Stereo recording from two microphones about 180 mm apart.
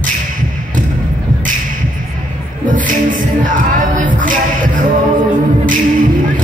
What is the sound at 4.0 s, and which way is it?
Music, 45° right (ahead or behind).